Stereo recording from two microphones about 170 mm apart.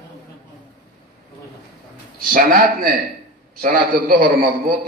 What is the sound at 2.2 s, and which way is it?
A man's voice, 60° right (ahead or behind).